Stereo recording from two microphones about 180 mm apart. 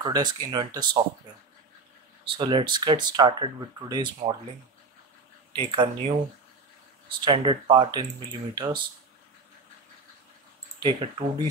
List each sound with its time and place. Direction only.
0.0 s speech: 25° right (ahead or behind)
2.3 s speech: 25° right (ahead or behind)
5.5 s speech: 30° right (ahead or behind)
7.2 s speech: 25° right (ahead or behind)
10.8 s speech: 25° right (ahead or behind)